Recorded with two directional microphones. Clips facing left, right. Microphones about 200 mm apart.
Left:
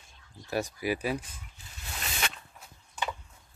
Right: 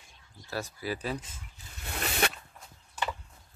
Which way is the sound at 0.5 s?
15° left (ahead or behind).